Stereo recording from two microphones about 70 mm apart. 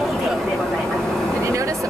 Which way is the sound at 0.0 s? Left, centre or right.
Centre.